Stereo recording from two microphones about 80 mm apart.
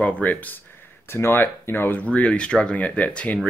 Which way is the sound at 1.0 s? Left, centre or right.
Left.